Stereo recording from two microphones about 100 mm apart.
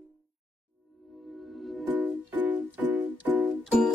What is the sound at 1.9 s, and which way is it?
Music, 15° right (ahead or behind).